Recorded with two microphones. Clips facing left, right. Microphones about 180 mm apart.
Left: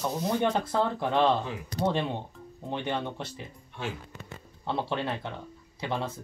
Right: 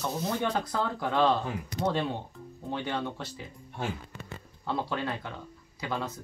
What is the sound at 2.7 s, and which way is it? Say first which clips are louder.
Speech: left 1 dB; 20° left (ahead or behind).